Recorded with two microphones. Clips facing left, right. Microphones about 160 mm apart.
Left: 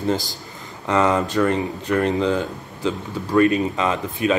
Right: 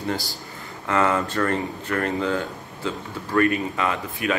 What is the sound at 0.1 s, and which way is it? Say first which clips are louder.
Speech: left 5 dB; 20° left (ahead or behind).